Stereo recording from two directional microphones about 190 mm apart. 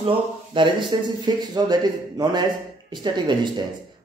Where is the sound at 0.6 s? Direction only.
25° right (ahead or behind).